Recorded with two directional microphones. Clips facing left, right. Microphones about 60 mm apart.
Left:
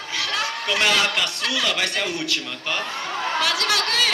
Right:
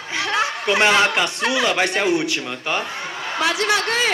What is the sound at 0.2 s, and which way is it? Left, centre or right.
A woman's voice, right.